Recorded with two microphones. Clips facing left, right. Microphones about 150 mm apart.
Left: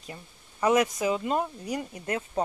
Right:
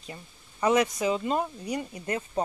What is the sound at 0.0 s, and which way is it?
Speech, 5° left (ahead or behind).